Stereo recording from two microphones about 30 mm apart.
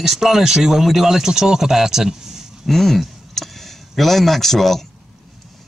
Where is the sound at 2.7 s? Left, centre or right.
Centre.